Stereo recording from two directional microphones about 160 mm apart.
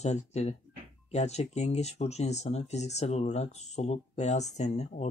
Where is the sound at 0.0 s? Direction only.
45° left (ahead or behind).